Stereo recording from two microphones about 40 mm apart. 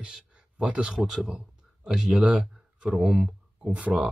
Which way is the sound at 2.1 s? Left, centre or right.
Right.